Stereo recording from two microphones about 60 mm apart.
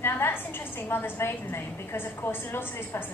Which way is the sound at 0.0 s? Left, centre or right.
Left.